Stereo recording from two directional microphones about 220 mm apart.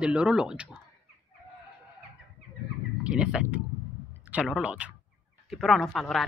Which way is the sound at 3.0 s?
5° right (ahead or behind).